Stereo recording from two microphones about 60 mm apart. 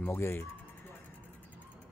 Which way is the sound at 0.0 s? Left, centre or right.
Left.